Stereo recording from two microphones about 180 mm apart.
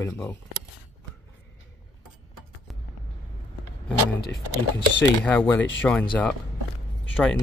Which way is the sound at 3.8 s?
5° left (ahead or behind).